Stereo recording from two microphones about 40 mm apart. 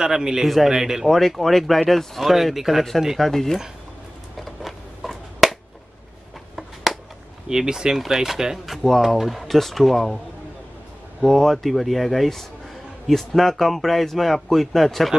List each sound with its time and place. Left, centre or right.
0.0 s speech: centre
0.4 s a man's voice: centre
0.7 s speech: centre
1.0 s a man's voice: centre
3.2 s speech: centre
4.4 s a sound: centre
7.4 s speech: centre
8.0 s speech: centre
9.2 s a man's voice: centre
11.2 s a man's voice: centre